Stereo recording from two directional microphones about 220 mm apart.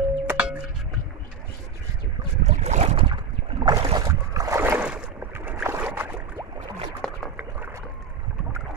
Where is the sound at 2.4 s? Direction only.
30° right (ahead or behind); by 6.4 s 5° right (ahead or behind).